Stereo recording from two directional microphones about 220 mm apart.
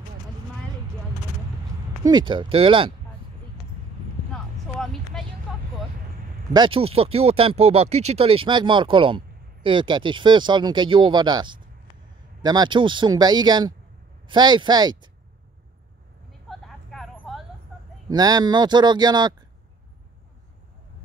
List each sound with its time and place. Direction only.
2.0 s speech: 20° right (ahead or behind)
4.3 s a sound: centre (ahead or behind)
6.5 s speech: 20° right (ahead or behind)
16.3 s vehicle: centre (ahead or behind)
18.1 s speech: 20° right (ahead or behind)